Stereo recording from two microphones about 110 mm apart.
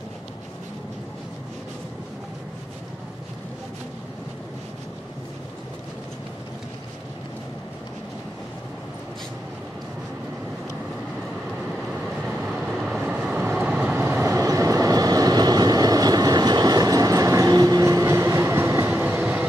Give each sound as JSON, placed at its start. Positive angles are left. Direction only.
{"t": 12.4, "sound": "vehicle", "side_deg": -5}
{"t": 14.2, "sound": "train", "side_deg": -30}